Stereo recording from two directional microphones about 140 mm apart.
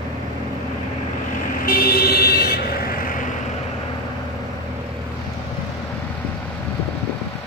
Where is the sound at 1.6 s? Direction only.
90° left.